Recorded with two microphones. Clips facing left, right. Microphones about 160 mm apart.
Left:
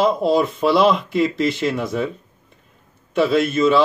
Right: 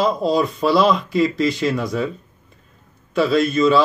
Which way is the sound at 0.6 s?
60° left (ahead or behind).